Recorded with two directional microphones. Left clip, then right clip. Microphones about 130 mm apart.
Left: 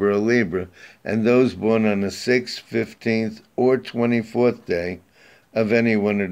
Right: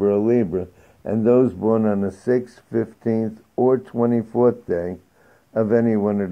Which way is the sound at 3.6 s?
25° left (ahead or behind).